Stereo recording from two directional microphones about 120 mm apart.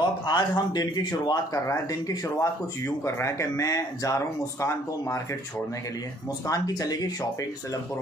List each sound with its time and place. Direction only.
0.3 s speech: 35° left (ahead or behind)
6.4 s speech: 30° left (ahead or behind)